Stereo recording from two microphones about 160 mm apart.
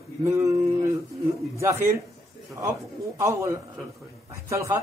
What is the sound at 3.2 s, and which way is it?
A man's voice, 20° right (ahead or behind).